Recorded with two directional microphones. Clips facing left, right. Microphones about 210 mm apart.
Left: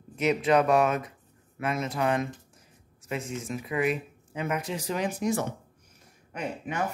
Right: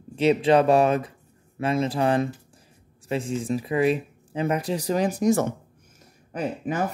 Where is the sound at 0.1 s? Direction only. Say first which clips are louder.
Right 5 dB; 30° right (ahead or behind).